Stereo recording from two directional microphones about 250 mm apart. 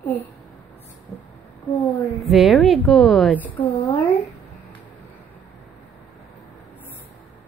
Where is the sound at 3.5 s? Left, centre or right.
Left.